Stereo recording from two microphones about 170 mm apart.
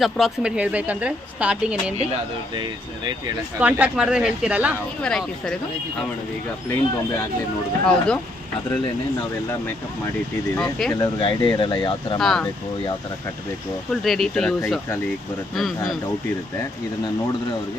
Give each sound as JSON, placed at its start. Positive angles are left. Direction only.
{"t": 0.0, "sound": "a woman's voice", "side_deg": 0}
{"t": 3.5, "sound": "a woman's voice", "side_deg": -10}
{"t": 5.0, "sound": "speech", "side_deg": 5}
{"t": 7.8, "sound": "speech", "side_deg": 5}
{"t": 10.5, "sound": "speech", "side_deg": 5}
{"t": 10.9, "sound": "speech", "side_deg": 25}
{"t": 12.2, "sound": "speech", "side_deg": 0}
{"t": 14.0, "sound": "speech", "side_deg": 0}